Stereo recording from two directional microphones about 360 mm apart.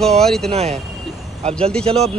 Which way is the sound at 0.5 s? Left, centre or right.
Centre.